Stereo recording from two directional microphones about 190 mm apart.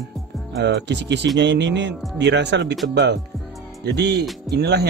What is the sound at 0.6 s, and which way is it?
Speech, 70° right (ahead or behind).